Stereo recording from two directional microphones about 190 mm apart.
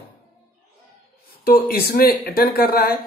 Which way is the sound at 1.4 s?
50° left (ahead or behind).